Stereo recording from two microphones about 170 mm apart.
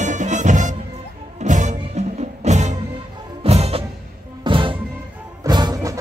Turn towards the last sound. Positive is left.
turn(degrees=-25)  # may be behind; listen again after turning